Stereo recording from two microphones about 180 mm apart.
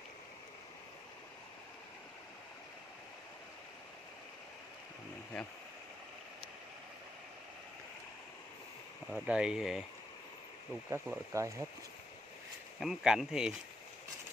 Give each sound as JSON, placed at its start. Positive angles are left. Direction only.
{"t": 9.1, "sound": "speech", "side_deg": -5}
{"t": 10.9, "sound": "speech", "side_deg": -15}
{"t": 12.8, "sound": "speech", "side_deg": -5}